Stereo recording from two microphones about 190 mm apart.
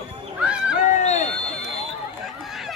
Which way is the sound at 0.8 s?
40° left (ahead or behind).